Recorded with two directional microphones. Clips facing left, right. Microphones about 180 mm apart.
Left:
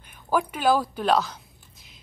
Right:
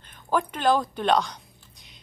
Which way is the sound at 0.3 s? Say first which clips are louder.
Left 1 dB; 10° left (ahead or behind).